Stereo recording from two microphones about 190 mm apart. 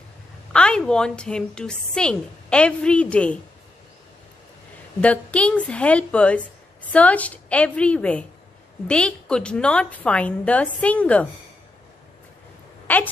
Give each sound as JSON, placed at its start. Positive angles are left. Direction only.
{"t": 0.5, "sound": "a woman's voice", "side_deg": 5}
{"t": 5.0, "sound": "a woman's voice", "side_deg": 5}
{"t": 12.8, "sound": "speech", "side_deg": 10}